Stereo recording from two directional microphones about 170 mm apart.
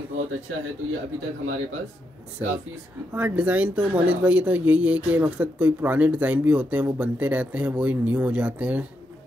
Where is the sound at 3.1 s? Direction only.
15° right (ahead or behind).